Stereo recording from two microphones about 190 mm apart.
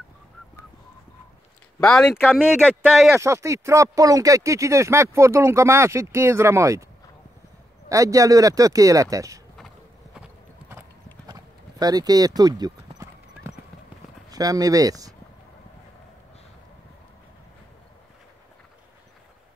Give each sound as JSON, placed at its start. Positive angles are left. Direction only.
{"t": 1.8, "sound": "speech", "side_deg": 5}
{"t": 3.1, "sound": "speech", "side_deg": -15}
{"t": 7.9, "sound": "speech", "side_deg": -15}
{"t": 10.1, "sound": "clip-clop", "side_deg": -10}
{"t": 14.3, "sound": "speech", "side_deg": -20}